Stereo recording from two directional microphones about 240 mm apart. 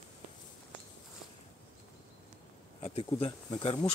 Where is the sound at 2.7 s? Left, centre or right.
Left.